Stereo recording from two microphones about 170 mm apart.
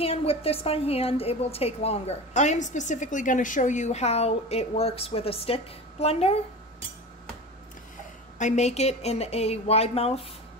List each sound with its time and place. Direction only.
0.0 s a woman's voice: 35° left (ahead or behind)
8.4 s a woman's voice: 45° left (ahead or behind)